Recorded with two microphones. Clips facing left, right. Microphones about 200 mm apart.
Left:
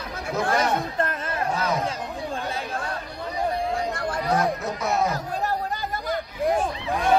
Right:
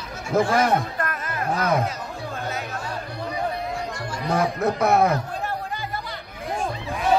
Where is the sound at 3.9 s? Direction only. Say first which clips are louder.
Left 4 dB; 55° left (ahead or behind).